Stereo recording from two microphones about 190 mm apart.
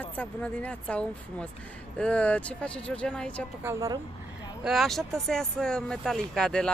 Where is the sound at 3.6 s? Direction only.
15° right (ahead or behind).